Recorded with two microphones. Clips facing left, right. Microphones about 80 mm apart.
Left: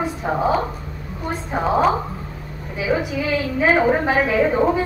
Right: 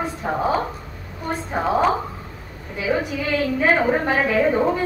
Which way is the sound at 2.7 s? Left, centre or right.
Centre.